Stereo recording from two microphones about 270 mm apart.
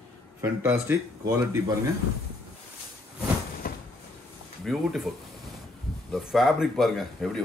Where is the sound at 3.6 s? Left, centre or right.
Left.